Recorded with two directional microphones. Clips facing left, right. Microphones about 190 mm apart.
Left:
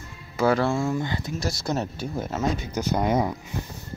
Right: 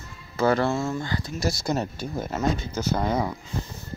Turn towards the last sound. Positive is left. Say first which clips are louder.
# left 2 dB
turn(degrees=20)  # may be behind; listen again after turning